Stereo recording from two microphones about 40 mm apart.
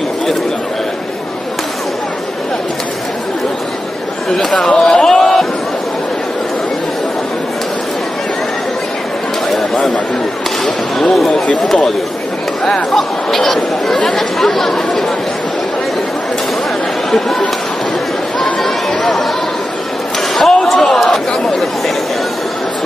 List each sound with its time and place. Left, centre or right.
4.4 s speech: centre
4.7 s a sound: centre
10.6 s a sound: centre
12.9 s speech: centre
17.1 s speech: centre
18.4 s chatter: centre
20.3 s chatter: centre